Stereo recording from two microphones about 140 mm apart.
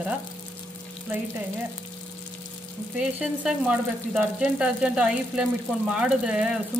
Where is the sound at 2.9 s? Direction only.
5° right (ahead or behind).